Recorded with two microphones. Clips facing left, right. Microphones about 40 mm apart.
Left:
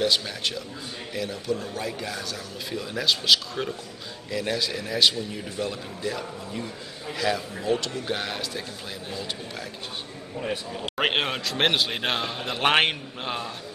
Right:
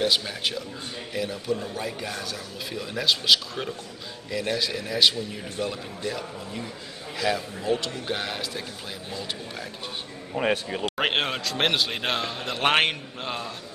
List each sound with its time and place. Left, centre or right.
0.0 s a man's voice: centre
10.3 s speech: right
11.0 s a man's voice: centre